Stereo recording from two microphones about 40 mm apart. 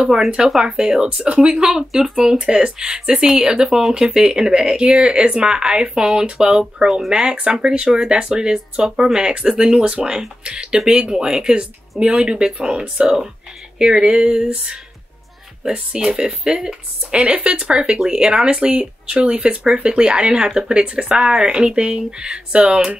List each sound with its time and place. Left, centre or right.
0.6 s speech: centre
11.2 s speech: centre
12.0 s speech: right